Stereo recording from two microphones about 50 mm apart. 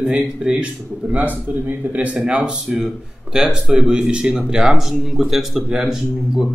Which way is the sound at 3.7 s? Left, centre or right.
Centre.